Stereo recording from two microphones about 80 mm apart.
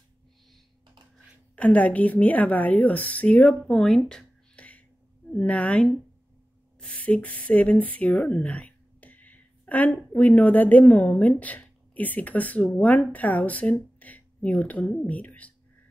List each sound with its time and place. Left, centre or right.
1.5 s a woman's voice: centre